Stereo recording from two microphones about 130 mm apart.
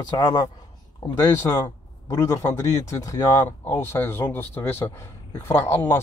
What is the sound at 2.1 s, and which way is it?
Speech, 25° left (ahead or behind).